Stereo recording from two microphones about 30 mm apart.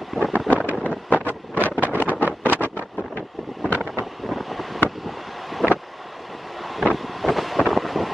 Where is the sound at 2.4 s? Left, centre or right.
Left.